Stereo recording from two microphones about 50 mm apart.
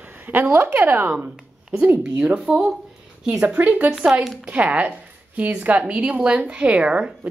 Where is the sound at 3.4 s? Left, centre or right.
Right.